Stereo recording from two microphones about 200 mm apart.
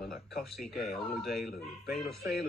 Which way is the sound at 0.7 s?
Centre (ahead or behind).